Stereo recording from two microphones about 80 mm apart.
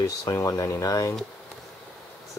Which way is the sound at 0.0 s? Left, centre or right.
Left.